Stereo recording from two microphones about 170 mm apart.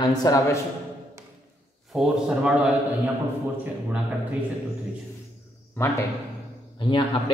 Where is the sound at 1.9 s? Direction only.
5° right (ahead or behind).